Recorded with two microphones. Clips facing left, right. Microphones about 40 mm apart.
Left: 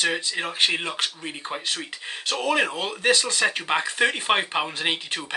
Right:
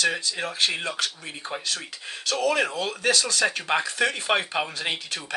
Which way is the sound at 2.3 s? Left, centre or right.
Left.